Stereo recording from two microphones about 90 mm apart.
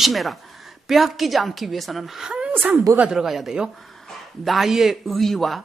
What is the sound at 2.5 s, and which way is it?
Speech, 20° right (ahead or behind).